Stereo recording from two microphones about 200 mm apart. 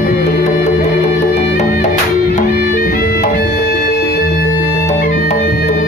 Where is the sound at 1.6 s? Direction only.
40° left (ahead or behind).